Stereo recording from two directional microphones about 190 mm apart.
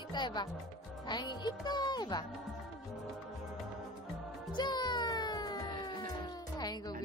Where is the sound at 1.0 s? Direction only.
20° left (ahead or behind).